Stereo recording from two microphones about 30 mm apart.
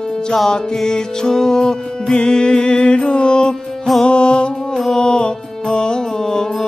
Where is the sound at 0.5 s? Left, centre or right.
Left.